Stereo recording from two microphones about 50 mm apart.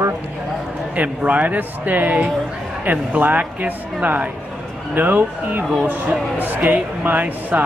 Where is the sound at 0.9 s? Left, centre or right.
Right.